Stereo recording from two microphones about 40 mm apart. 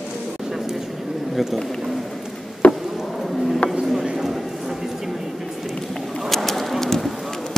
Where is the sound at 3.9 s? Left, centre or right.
Centre.